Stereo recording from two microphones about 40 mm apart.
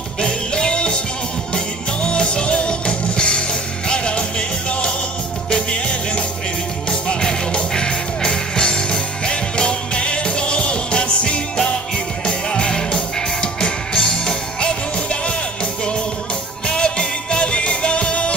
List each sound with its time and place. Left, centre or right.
0.2 s music: left
16.6 s music: left